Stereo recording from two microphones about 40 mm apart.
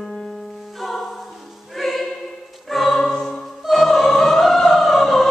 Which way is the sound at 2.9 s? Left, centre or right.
Centre.